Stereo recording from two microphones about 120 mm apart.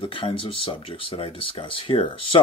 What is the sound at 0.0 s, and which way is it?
Speech, 45° left (ahead or behind).